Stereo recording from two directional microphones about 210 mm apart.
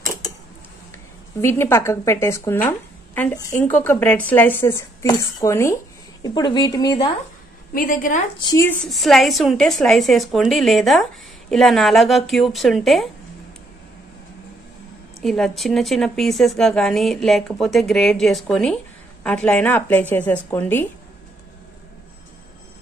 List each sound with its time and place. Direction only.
0.9 s a woman's voice: 10° left (ahead or behind)
7.7 s a woman's voice: 40° left (ahead or behind)
8.4 s a woman's voice: 20° left (ahead or behind)
8.6 s speech: centre (ahead or behind)
15.1 s a woman's voice: centre (ahead or behind)